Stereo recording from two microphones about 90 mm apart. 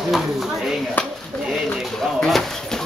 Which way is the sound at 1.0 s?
15° left (ahead or behind).